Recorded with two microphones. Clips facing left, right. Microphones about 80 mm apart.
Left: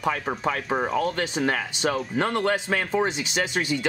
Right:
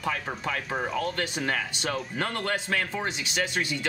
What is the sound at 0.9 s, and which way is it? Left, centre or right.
Speech, centre.